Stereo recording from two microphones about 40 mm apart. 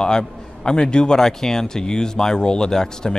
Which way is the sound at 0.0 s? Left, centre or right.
Centre.